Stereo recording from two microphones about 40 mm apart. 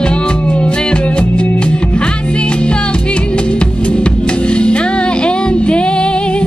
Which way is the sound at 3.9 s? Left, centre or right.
Left.